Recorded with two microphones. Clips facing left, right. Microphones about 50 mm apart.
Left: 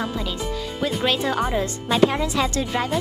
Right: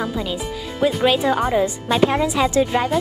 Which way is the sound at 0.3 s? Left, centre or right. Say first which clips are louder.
Right 1 dB; centre.